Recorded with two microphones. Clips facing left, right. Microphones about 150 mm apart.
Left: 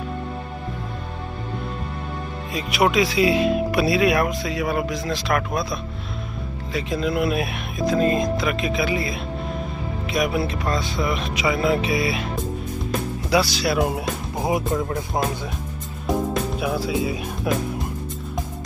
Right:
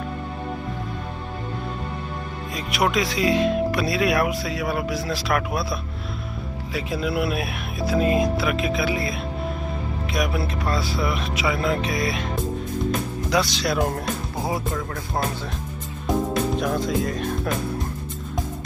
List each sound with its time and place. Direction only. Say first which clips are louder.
2.5 s speech: left 3 dB; centre (ahead or behind)
10.1 s speech: left 3 dB; centre (ahead or behind)
13.3 s speech: left 2 dB; 5° left (ahead or behind)
14.4 s speech: left 6 dB; 20° left (ahead or behind)
16.5 s speech: even; 5° left (ahead or behind)